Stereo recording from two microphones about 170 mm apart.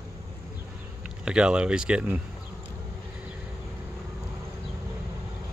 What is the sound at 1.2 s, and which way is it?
Speech, 5° right (ahead or behind).